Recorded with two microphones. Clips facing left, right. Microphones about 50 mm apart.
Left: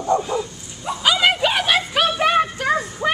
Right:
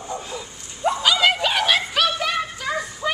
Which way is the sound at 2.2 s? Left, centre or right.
Left.